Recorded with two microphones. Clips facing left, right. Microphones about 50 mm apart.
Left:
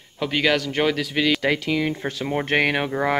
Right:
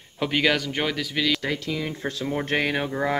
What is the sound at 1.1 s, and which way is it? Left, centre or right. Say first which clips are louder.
Speech: left 3 dB; centre.